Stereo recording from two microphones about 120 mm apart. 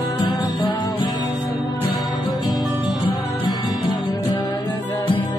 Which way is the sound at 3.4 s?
40° left (ahead or behind).